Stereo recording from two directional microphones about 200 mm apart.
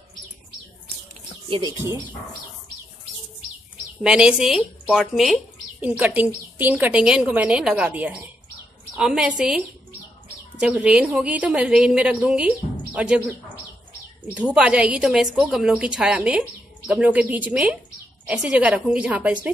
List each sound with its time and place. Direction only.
1.5 s a woman's voice: 15° right (ahead or behind)
4.0 s a woman's voice: 5° right (ahead or behind)